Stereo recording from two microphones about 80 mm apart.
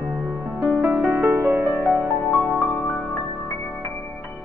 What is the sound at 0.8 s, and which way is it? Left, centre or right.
Music, centre.